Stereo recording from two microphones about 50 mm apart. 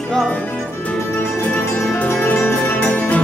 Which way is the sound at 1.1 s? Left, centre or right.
Left.